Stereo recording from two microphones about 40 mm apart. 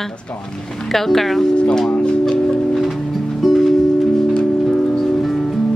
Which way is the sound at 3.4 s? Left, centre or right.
Centre.